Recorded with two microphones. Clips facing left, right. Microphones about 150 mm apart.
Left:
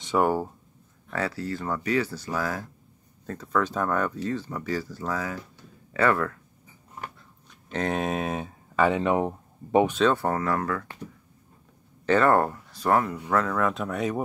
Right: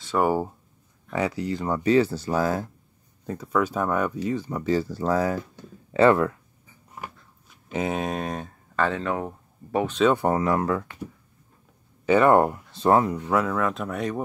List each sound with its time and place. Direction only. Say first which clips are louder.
0.2 s speech: right 2 dB; 10° right (ahead or behind); by 2.6 s 25° right (ahead or behind)
3.3 s speech: right 2 dB; 10° right (ahead or behind); by 5.4 s 35° right (ahead or behind)
5.9 s speech: right 6 dB; 25° right (ahead or behind)
7.0 s a sound: right 1 dB; 10° right (ahead or behind); by 9.9 s 20° left (ahead or behind)
10.1 s speech: right 4 dB; 15° right (ahead or behind)
12.1 s speech: right 3 dB; 15° right (ahead or behind)
13.3 s speech: left 1 dB; 10° right (ahead or behind)